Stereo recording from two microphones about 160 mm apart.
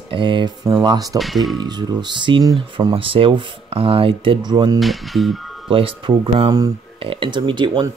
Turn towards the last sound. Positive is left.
turn(degrees=-30)  # may be behind; listen again after turning